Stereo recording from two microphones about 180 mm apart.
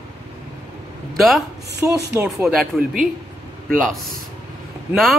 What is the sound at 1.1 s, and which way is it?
Speech, centre (ahead or behind).